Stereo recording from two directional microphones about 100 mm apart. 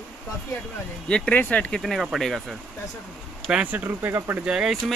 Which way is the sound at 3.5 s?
15° right (ahead or behind).